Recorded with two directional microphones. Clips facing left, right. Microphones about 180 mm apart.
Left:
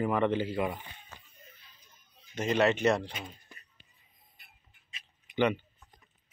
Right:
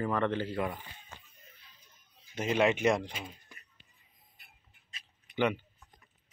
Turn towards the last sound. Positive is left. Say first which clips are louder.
# left 2 dB
turn(degrees=-5)  # may be behind; listen again after turning